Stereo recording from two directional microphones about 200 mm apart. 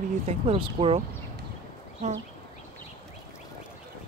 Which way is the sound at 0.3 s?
30° right (ahead or behind).